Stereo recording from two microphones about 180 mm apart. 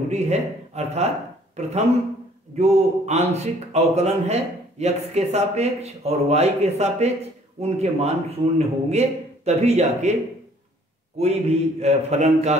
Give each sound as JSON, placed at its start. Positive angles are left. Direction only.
{"t": 0.1, "sound": "a man's voice", "side_deg": -35}
{"t": 2.5, "sound": "a man's voice", "side_deg": -40}
{"t": 11.1, "sound": "a man's voice", "side_deg": -35}